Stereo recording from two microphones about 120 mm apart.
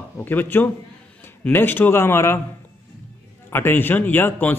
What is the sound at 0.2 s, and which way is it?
A man's voice, 15° left (ahead or behind).